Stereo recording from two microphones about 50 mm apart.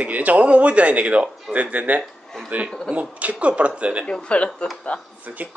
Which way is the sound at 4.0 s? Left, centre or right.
Left.